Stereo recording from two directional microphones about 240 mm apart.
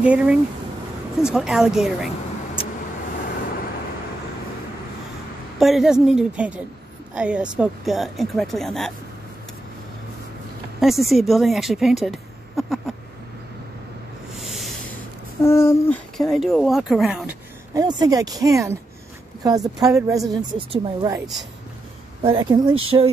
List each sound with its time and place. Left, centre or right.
0.0 s speech: centre
5.6 s speech: centre
10.8 s a woman's voice: centre
14.4 s rub: centre
15.4 s a sound: centre
16.2 s speech: centre
17.7 s speech: centre
22.2 s speech: centre